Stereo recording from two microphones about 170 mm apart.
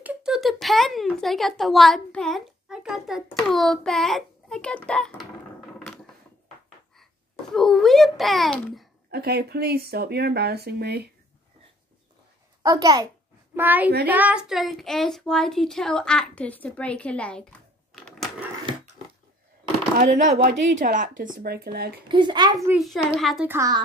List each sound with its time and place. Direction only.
0.0 s speech: 5° right (ahead or behind)
7.0 s a child's voice: centre (ahead or behind)
9.1 s speech: 70° right (ahead or behind)
12.6 s a child's voice: 20° right (ahead or behind)
13.6 s a woman's voice: 10° right (ahead or behind)
20.0 s speech: 45° right (ahead or behind)
21.4 s speech: 65° right (ahead or behind)
22.1 s a child's voice: 25° right (ahead or behind)
22.8 s speech: centre (ahead or behind)
23.5 s a child's voice: 20° right (ahead or behind)